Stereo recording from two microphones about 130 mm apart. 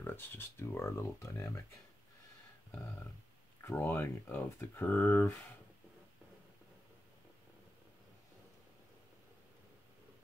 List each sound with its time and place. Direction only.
0.0 s speech: 15° left (ahead or behind)
3.6 s speech: 15° left (ahead or behind)